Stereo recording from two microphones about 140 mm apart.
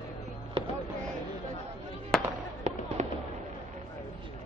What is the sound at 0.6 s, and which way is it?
Fireworks, 40° right (ahead or behind).